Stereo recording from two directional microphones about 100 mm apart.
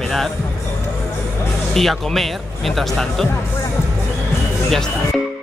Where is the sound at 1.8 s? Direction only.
Centre (ahead or behind).